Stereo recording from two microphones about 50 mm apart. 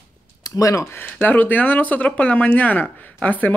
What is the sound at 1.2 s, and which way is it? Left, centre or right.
Speech, left.